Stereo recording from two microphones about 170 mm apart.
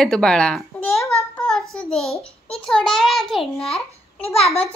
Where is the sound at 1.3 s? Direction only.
5° left (ahead or behind).